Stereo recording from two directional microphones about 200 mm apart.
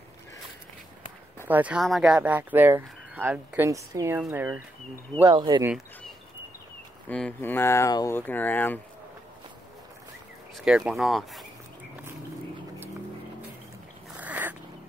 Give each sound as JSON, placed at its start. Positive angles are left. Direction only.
{"t": 1.5, "sound": "speech", "side_deg": -5}
{"t": 5.2, "sound": "speech", "side_deg": -20}
{"t": 7.1, "sound": "speech", "side_deg": 5}
{"t": 10.6, "sound": "speech", "side_deg": -5}
{"t": 14.1, "sound": "cat", "side_deg": -10}